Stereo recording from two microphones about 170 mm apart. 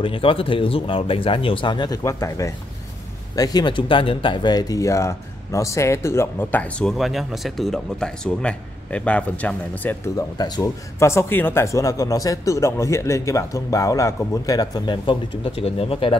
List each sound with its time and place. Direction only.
0.0 s speech: 30° left (ahead or behind)